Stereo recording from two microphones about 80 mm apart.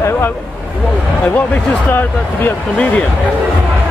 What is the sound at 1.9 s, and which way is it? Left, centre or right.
Speech, left.